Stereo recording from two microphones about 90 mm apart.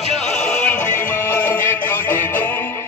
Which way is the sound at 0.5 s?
15° left (ahead or behind).